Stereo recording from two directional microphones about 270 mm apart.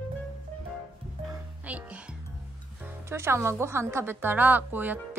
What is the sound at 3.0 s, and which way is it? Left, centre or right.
A woman's voice, centre.